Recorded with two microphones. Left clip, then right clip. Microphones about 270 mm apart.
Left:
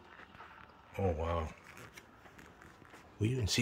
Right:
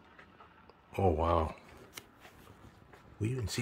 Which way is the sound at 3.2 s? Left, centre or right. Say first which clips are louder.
Left 2 dB; centre.